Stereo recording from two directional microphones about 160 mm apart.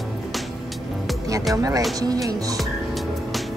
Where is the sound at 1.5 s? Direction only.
20° right (ahead or behind).